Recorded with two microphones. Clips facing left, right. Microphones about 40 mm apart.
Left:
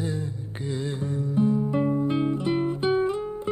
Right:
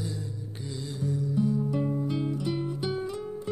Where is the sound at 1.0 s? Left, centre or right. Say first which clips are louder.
Left 2 dB; left.